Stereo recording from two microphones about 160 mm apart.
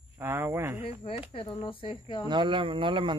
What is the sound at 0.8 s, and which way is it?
Speech, 35° left (ahead or behind).